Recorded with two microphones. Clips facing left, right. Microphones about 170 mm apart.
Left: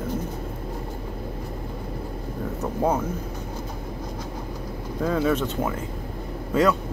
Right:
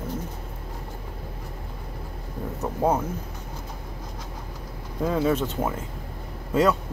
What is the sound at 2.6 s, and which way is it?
Speech, 5° right (ahead or behind).